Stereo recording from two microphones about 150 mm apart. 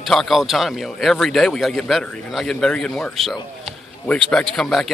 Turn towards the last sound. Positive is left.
turn(degrees=0)  # may be behind; listen again after turning